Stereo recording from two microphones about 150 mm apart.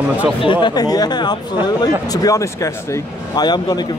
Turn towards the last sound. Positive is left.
turn(degrees=25)  # may be behind; listen again after turning